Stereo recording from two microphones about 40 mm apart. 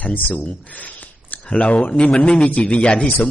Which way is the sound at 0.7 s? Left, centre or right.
Left.